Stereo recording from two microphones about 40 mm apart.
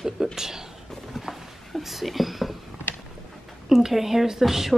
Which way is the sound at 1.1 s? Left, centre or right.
Centre.